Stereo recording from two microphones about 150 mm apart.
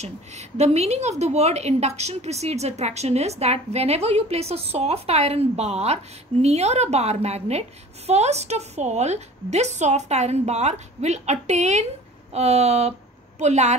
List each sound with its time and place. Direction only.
0.0 s a woman's voice: 45° right (ahead or behind)